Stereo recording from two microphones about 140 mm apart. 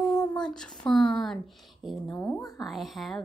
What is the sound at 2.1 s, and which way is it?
Speech, 20° left (ahead or behind).